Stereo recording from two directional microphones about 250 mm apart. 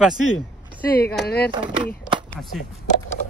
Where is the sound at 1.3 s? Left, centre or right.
Left.